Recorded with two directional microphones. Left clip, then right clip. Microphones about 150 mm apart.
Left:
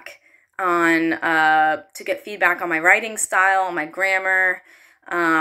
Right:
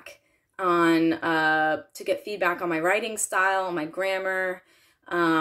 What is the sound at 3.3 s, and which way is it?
A woman's voice, 45° right (ahead or behind).